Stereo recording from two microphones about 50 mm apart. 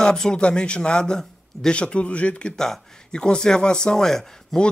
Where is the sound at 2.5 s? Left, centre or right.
Centre.